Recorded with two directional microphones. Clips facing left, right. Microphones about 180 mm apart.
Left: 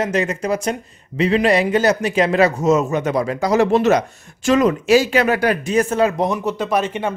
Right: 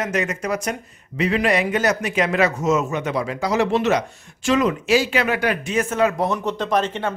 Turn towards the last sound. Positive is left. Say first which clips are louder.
# left 2 dB
turn(degrees=10)  # may be behind; listen again after turning